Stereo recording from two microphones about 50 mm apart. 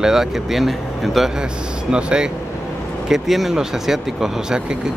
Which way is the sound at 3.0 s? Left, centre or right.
Centre.